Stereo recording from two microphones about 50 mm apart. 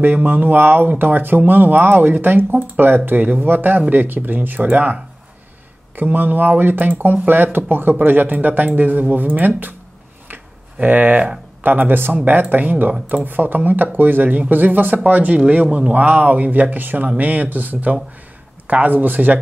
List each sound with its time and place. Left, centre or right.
0.0 s speech: right
5.9 s speech: right
10.2 s a sound: right
12.3 s speech: right